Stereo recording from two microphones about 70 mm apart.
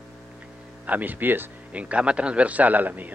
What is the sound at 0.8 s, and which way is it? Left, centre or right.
Speech, right.